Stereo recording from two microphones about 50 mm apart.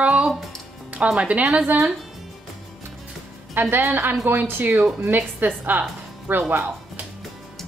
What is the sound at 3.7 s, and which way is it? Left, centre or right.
A woman's voice, right.